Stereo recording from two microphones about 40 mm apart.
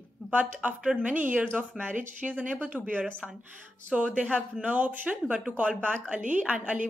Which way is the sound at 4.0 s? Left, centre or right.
Right.